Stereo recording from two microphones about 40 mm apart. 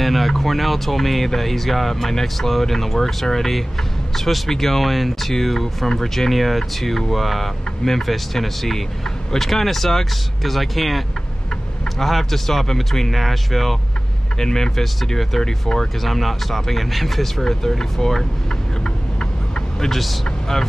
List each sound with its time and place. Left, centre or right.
0.0 s speech: centre
16.0 s speech: centre
19.1 s vehicle: left
19.9 s speech: centre
20.2 s speech: centre